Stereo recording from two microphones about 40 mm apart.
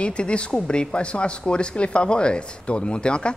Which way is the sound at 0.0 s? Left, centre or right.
Left.